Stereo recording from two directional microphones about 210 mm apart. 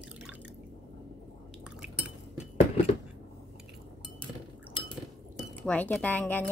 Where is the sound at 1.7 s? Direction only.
5° right (ahead or behind).